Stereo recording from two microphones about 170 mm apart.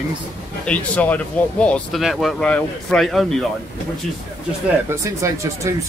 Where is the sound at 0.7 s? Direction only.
10° left (ahead or behind).